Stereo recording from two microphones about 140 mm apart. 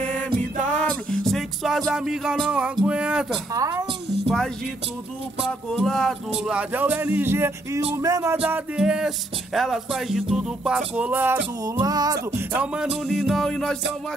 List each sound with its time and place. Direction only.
0.8 s music: 5° left (ahead or behind)
3.5 s music: 25° right (ahead or behind)
5.7 s speech: 5° left (ahead or behind); by 7.8 s 15° right (ahead or behind)
7.9 s music: 25° right (ahead or behind)
8.4 s music: 10° right (ahead or behind)
10.3 s speech: 5° right (ahead or behind)
11.8 s music: 25° right (ahead or behind)
12.4 s music: 10° right (ahead or behind)